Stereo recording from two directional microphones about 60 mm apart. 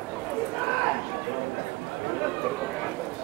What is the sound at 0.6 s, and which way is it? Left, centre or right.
Run, centre.